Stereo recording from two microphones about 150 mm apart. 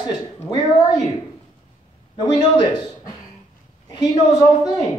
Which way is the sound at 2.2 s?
25° left (ahead or behind).